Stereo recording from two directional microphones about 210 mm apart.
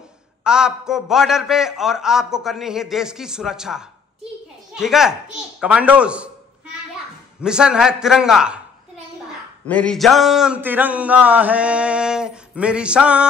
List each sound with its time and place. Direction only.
0.4 s a man's voice: 5° right (ahead or behind)
7.4 s a man's voice: 5° right (ahead or behind)
9.7 s a man's voice: 5° left (ahead or behind)